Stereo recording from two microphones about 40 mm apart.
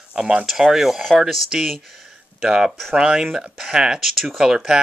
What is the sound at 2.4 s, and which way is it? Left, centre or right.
Speech, centre.